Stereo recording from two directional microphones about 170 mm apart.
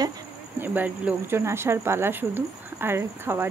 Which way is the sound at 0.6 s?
10° right (ahead or behind).